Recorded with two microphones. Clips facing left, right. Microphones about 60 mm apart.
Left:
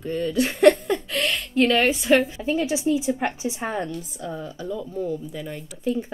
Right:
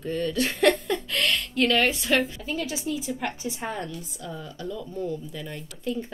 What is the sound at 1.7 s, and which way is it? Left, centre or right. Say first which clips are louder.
A woman's voice: left 4 dB; centre.